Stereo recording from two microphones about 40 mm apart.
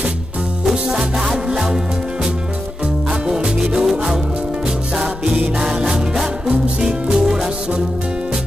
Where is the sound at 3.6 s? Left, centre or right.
Centre.